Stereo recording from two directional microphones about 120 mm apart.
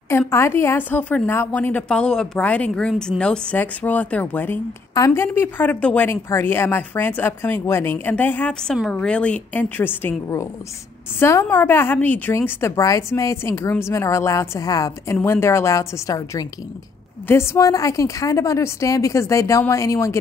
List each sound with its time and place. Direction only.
0.3 s a woman's voice: 20° left (ahead or behind)